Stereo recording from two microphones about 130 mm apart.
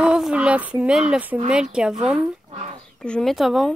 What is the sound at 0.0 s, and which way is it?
Speech, 5° right (ahead or behind).